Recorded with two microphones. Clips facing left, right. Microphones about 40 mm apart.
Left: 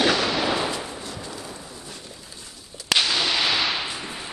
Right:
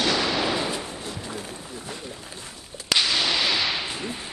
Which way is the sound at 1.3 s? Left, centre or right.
Right.